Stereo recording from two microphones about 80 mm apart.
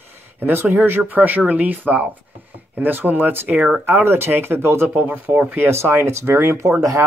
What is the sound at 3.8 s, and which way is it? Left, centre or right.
Speech, right.